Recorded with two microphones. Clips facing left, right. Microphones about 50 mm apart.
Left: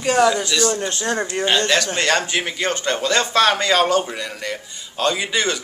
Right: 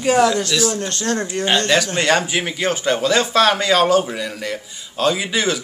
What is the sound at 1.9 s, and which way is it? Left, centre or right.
Speech, centre.